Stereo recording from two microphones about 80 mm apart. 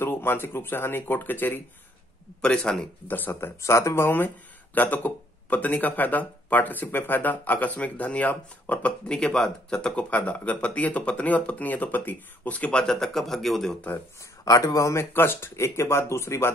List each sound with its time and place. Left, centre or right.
0.0 s speech: left
2.4 s speech: centre
3.1 s speech: left
12.8 s speech: centre
13.7 s speech: left
14.4 s speech: left
15.1 s speech: left